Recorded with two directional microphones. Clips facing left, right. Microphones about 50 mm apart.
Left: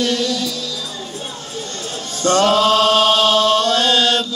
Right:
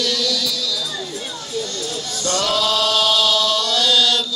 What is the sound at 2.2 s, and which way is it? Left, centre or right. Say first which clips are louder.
Chant: left 7 dB; left.